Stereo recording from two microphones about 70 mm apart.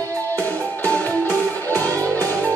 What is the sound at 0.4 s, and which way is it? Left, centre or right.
Music, left.